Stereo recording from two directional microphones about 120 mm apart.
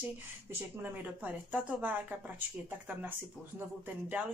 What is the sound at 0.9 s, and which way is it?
Speech, 15° right (ahead or behind).